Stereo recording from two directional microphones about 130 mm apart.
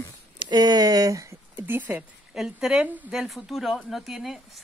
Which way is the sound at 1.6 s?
15° right (ahead or behind).